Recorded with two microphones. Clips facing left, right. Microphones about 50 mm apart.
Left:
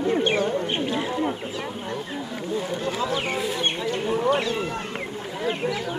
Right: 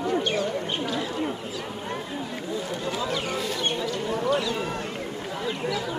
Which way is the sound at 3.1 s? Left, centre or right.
Left.